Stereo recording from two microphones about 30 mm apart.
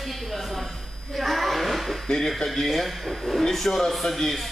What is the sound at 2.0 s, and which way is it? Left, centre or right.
Speech, centre.